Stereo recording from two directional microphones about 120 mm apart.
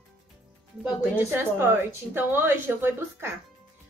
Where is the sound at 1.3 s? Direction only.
20° right (ahead or behind).